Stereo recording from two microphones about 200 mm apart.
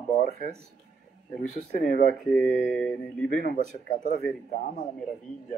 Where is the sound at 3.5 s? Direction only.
40° left (ahead or behind).